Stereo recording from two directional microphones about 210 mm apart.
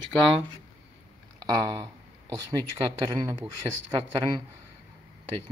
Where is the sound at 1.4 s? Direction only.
15° right (ahead or behind).